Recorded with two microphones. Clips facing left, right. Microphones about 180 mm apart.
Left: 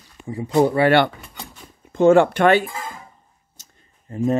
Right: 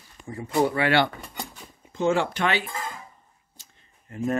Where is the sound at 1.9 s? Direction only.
55° left (ahead or behind).